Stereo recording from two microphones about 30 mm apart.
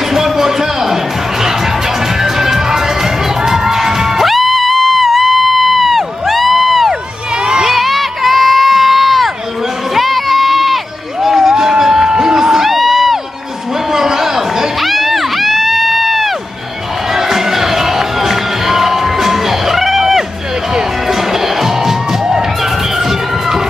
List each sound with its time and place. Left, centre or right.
0.1 s a sound: centre
1.4 s music: centre
2.1 s crowd: centre
4.3 s music: centre
5.0 s crowd: centre
6.9 s crowd: right
7.6 s crowd: centre
9.9 s run: centre
11.1 s crowd: centre
12.6 s crowd: centre
13.9 s a sound: centre
14.8 s crowd: centre
17.1 s crowd: centre
21.1 s music: centre